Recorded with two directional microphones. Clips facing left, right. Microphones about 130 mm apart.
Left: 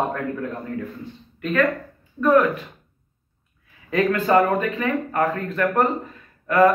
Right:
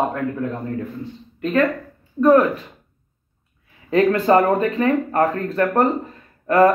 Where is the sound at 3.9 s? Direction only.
35° right (ahead or behind).